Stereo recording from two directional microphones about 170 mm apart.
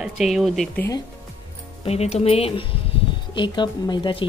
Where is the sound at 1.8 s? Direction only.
40° left (ahead or behind).